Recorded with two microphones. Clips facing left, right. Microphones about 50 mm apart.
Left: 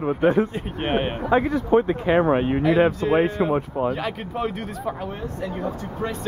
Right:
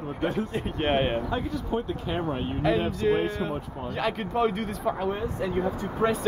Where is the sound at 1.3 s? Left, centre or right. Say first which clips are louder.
Left 10 dB; left.